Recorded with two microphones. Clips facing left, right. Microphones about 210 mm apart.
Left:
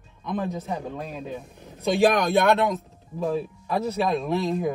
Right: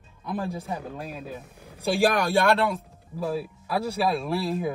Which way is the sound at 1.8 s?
30° right (ahead or behind).